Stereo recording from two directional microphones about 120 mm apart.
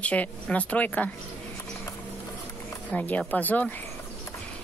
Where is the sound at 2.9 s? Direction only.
10° left (ahead or behind).